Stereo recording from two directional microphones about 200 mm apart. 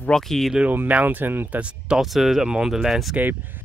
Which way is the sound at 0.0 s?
Centre (ahead or behind).